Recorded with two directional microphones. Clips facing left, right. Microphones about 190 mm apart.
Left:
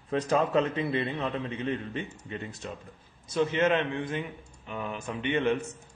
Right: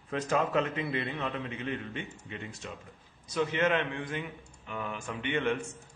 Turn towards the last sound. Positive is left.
turn(degrees=20)  # may be behind; listen again after turning